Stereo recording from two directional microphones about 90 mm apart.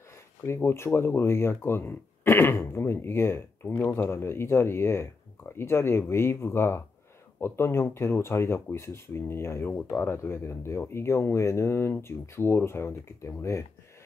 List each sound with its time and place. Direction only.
0.5 s speech: 30° left (ahead or behind)